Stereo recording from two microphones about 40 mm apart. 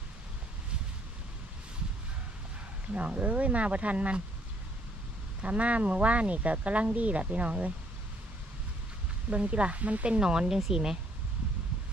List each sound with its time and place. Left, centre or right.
2.9 s speech: right
5.4 s speech: right
9.3 s speech: right